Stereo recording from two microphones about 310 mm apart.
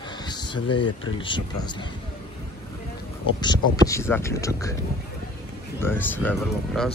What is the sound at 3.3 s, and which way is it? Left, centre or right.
Speech, centre.